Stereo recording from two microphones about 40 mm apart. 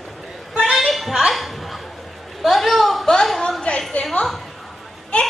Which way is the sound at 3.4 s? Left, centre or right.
Left.